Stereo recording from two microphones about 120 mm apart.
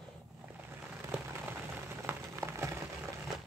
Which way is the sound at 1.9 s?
20° right (ahead or behind).